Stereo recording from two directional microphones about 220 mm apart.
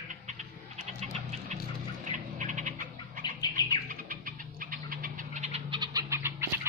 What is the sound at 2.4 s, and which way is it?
Frog, 35° right (ahead or behind).